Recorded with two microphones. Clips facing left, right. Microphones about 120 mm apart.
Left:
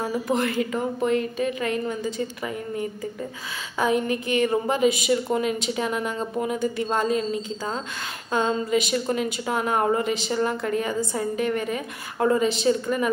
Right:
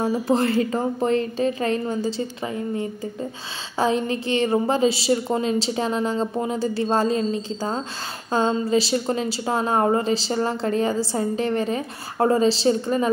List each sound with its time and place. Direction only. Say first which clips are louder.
0.0 s a woman's voice: right 4 dB; 30° right (ahead or behind)